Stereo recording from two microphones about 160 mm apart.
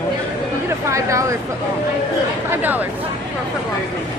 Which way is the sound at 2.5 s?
10° right (ahead or behind).